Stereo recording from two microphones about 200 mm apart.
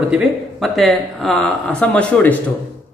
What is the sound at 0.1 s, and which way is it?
Speech, centre (ahead or behind).